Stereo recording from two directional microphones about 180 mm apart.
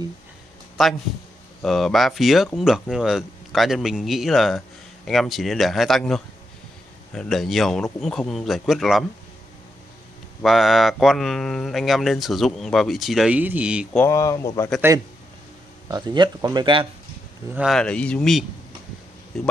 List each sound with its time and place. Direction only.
0.8 s speech: centre (ahead or behind)
10.4 s speech: centre (ahead or behind)
13.9 s speech: 15° left (ahead or behind)
15.9 s speech: 25° right (ahead or behind)
17.6 s speech: centre (ahead or behind)